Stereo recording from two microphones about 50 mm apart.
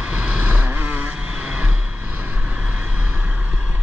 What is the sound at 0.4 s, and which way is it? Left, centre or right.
Vehicle, right.